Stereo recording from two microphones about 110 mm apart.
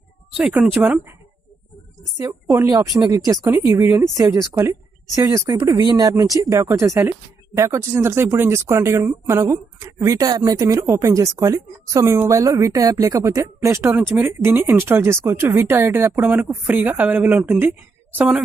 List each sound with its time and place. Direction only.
0.4 s speech: 5° right (ahead or behind)
2.2 s speech: 30° right (ahead or behind)
13.9 s speech: 15° right (ahead or behind)